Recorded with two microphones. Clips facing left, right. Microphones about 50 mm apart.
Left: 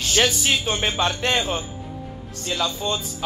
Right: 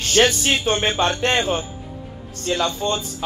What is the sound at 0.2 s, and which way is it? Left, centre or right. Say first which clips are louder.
Speech: right 4 dB; right.